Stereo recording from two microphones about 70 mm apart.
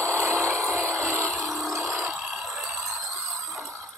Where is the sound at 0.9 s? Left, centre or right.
Centre.